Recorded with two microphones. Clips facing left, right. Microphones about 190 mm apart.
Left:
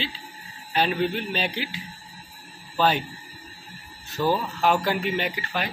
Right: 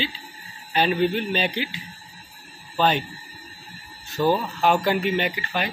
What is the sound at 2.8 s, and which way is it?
Speech, 5° left (ahead or behind).